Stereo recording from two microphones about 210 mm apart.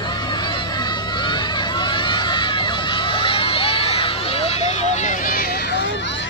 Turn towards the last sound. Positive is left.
turn(degrees=55)  # may be behind; listen again after turning